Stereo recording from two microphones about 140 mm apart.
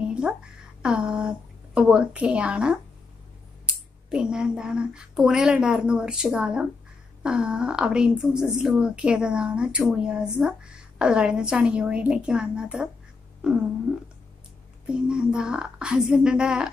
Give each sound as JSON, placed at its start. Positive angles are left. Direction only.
{"t": 0.0, "sound": "a sound", "side_deg": -5}
{"t": 0.8, "sound": "a woman's voice", "side_deg": -5}
{"t": 4.1, "sound": "a woman's voice", "side_deg": -5}
{"t": 14.9, "sound": "a woman's voice", "side_deg": -5}